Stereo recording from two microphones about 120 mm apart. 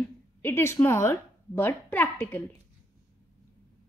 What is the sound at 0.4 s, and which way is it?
A woman's voice, 20° left (ahead or behind).